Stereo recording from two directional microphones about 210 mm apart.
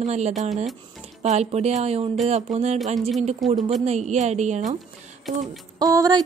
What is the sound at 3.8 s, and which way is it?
Speech, 30° right (ahead or behind).